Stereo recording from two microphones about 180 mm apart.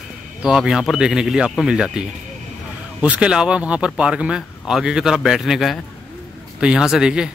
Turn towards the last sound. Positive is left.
turn(degrees=-5)  # may be behind; listen again after turning